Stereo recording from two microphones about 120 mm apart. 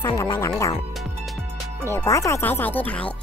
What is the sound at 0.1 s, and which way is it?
Speech, 35° left (ahead or behind).